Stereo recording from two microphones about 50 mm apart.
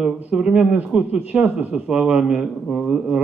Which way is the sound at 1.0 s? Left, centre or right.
Right.